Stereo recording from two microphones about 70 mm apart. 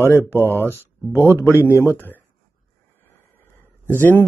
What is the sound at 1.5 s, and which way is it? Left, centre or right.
Speech, left.